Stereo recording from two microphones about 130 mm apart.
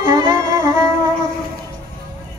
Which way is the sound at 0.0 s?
30° right (ahead or behind).